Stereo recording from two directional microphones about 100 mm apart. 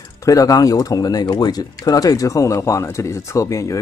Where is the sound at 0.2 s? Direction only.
35° left (ahead or behind).